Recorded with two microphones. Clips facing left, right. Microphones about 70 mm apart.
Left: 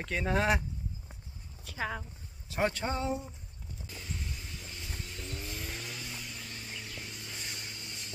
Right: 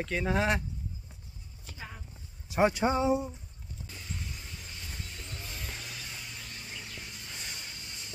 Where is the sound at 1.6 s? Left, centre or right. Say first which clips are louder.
Left 10 dB; left.